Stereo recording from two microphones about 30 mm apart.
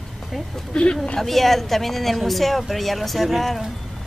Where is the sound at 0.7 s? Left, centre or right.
Left.